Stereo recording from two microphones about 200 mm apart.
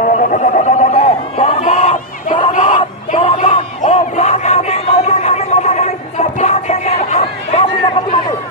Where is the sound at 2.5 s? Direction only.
40° left (ahead or behind).